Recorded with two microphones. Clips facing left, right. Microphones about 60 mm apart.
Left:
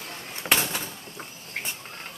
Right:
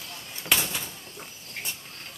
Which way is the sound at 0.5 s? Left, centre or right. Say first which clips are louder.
Left 2 dB; left.